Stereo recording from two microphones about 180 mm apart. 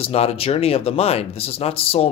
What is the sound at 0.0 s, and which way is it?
Speech, 35° left (ahead or behind).